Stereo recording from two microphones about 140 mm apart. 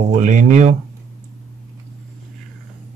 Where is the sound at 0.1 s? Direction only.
65° right (ahead or behind).